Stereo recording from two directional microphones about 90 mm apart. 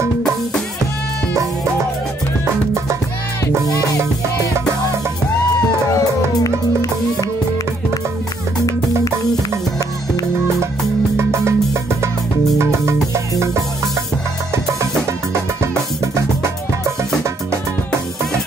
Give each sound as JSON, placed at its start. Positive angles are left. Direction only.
{"t": 2.4, "sound": "music", "side_deg": -30}
{"t": 5.9, "sound": "music", "side_deg": 40}
{"t": 11.1, "sound": "music", "side_deg": -30}
{"t": 14.5, "sound": "music", "side_deg": -35}